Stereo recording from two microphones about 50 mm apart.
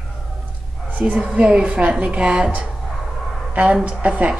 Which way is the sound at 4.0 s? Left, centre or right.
Right.